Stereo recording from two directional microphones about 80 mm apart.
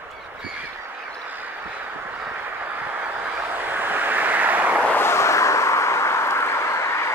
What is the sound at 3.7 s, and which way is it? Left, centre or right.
Vehicle, right.